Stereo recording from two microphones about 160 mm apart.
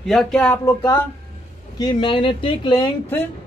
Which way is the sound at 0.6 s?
15° left (ahead or behind).